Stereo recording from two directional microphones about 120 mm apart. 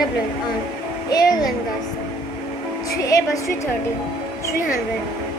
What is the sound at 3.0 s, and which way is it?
Speech, 25° left (ahead or behind).